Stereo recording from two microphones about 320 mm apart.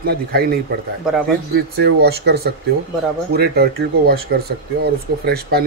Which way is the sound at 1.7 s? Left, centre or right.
Right.